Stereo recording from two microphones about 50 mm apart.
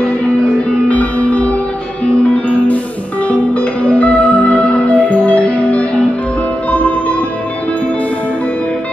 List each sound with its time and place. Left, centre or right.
0.8 s music: left